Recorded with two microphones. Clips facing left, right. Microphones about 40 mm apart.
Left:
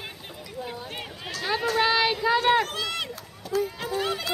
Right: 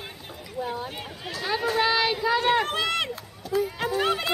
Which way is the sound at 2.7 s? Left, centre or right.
Right.